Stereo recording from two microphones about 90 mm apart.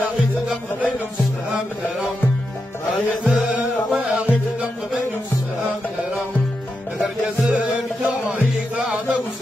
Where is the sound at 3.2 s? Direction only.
5° right (ahead or behind).